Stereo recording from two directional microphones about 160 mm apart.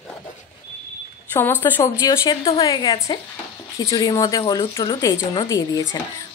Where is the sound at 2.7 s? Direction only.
25° left (ahead or behind).